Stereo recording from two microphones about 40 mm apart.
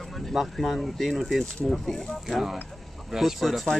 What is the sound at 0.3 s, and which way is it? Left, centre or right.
Speech, centre.